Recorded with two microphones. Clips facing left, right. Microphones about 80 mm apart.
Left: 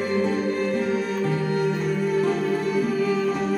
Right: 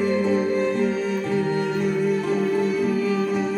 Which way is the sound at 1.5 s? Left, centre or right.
Centre.